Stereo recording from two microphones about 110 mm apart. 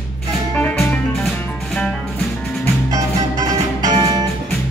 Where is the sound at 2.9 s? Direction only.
35° right (ahead or behind).